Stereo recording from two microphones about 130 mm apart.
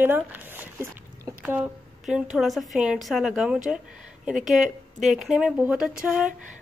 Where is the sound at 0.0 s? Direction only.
15° right (ahead or behind).